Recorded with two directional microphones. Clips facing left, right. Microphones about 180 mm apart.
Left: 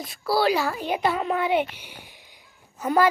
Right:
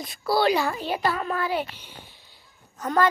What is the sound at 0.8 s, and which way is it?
A child's voice, 20° left (ahead or behind).